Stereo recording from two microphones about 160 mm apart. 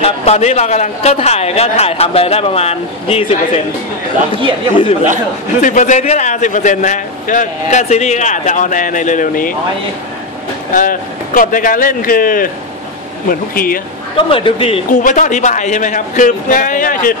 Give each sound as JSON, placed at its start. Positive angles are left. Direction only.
{"t": 0.0, "sound": "speech", "side_deg": 45}
{"t": 5.6, "sound": "a man's voice", "side_deg": 50}
{"t": 10.7, "sound": "speech", "side_deg": 55}
{"t": 14.1, "sound": "speech", "side_deg": 35}
{"t": 14.9, "sound": "a man's voice", "side_deg": 55}